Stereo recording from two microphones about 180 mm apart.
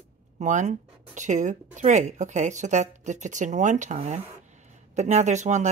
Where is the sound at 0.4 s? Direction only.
40° right (ahead or behind).